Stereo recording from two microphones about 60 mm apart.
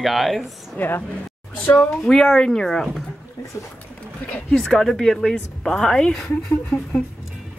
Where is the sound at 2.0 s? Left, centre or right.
Centre.